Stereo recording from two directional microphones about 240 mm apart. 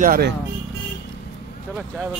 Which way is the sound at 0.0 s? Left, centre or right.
Right.